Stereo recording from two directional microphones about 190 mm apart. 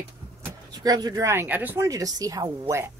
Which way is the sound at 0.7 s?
20° right (ahead or behind).